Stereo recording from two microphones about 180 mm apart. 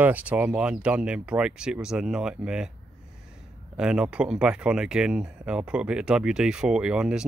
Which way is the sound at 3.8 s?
5° right (ahead or behind).